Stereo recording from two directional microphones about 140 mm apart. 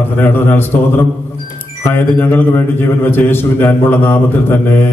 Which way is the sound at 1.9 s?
15° left (ahead or behind).